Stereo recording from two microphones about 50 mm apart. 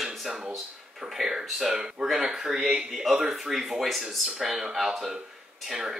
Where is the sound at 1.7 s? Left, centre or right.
Centre.